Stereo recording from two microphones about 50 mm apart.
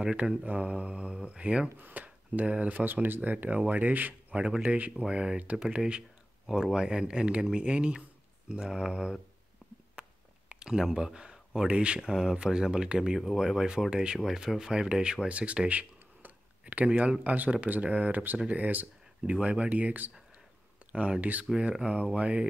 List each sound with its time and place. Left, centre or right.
0.5 s mantra: right
1.8 s speech: right
2.0 s speech: right
2.9 s speech: right
4.6 s mantra: right
5.0 s speech: centre
5.6 s mantra: centre
6.4 s speech: centre
10.6 s speech: centre; by 19.3 s right
19.3 s mantra: right